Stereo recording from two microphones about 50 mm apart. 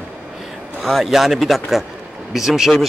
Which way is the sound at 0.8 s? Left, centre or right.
Centre.